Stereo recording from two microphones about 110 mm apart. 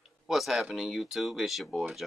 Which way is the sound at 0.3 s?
Centre (ahead or behind).